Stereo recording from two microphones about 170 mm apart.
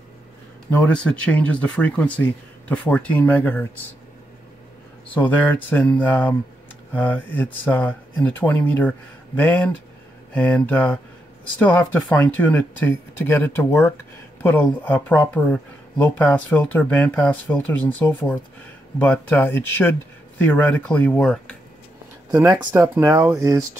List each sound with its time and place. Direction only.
0.7 s speech: 10° left (ahead or behind)
5.1 s speech: 10° left (ahead or behind)
22.3 s speech: 20° right (ahead or behind)